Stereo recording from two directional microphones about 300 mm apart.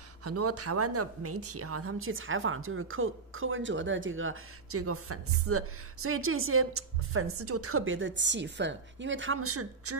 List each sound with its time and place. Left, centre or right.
0.2 s a woman's voice: right